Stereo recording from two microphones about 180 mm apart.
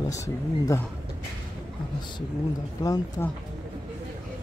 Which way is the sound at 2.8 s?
20° left (ahead or behind).